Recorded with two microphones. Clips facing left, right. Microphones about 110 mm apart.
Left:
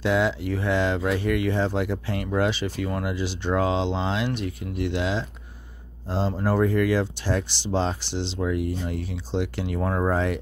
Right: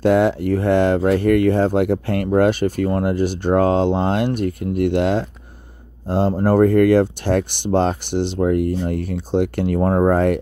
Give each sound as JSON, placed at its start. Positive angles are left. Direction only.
{"t": 0.0, "sound": "speech", "side_deg": -50}